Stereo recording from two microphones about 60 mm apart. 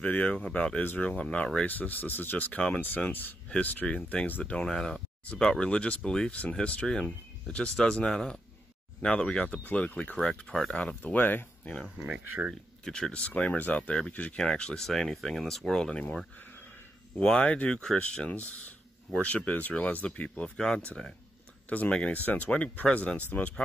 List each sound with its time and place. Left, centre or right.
0.0 s speech: left
3.4 s speech: left
4.6 s speech: centre
9.7 s speech: left
10.1 s speech: centre
11.1 s speech: left
12.8 s speech: centre
17.2 s speech: centre